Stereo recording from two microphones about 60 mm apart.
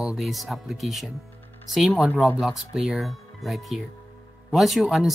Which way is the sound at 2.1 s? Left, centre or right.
Centre.